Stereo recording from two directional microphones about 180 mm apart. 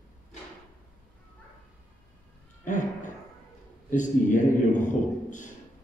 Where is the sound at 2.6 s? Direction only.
45° left (ahead or behind).